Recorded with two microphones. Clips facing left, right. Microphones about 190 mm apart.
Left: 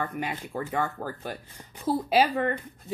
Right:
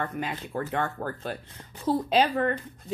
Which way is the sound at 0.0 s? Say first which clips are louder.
Even; 5° left (ahead or behind).